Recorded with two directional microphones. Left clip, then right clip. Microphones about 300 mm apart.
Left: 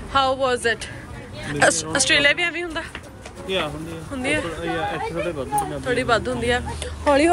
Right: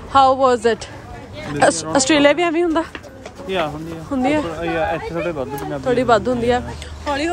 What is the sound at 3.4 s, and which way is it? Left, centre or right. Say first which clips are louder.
Speech: right 3 dB; centre.